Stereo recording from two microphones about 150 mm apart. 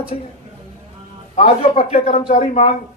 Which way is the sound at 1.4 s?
45° left (ahead or behind).